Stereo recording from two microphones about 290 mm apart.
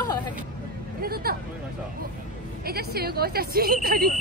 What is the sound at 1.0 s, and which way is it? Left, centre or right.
Speech, right.